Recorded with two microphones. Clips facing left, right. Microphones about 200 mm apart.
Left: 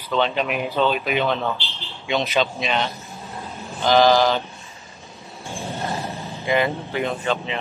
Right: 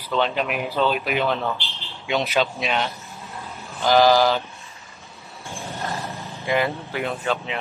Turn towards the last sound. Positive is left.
turn(degrees=-5)  # may be behind; listen again after turning